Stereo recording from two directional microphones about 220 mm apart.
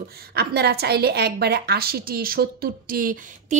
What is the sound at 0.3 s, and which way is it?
A woman's voice, 45° right (ahead or behind).